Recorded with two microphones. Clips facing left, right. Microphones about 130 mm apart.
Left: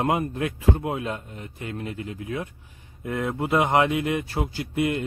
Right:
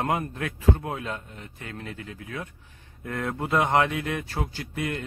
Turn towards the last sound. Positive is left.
turn(degrees=10)  # may be behind; listen again after turning